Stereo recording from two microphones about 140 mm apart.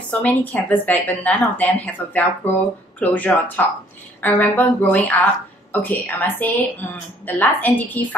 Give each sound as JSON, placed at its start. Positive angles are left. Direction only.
{"t": 0.1, "sound": "speech", "side_deg": 10}